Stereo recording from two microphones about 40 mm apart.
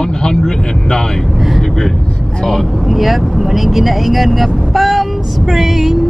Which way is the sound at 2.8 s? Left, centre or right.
Centre.